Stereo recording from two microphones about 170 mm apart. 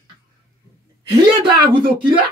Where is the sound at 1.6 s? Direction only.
30° right (ahead or behind).